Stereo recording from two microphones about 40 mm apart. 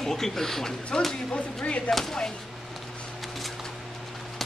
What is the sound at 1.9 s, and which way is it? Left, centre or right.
Speech, centre.